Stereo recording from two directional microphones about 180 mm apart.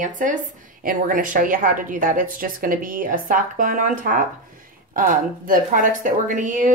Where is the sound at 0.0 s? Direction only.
45° right (ahead or behind).